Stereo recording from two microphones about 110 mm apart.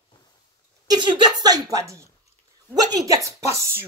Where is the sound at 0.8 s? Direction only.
40° right (ahead or behind).